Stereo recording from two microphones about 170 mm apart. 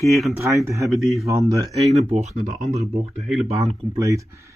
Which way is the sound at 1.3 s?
20° right (ahead or behind).